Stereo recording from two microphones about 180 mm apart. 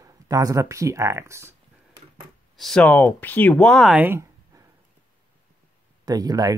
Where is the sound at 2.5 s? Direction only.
5° left (ahead or behind); by 4.7 s 15° right (ahead or behind).